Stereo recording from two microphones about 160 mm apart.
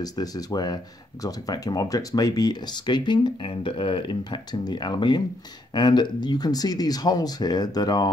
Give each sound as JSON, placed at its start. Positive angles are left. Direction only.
{"t": 0.0, "sound": "speech", "side_deg": 25}